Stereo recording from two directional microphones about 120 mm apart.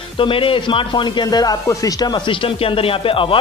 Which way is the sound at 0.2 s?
45° left (ahead or behind).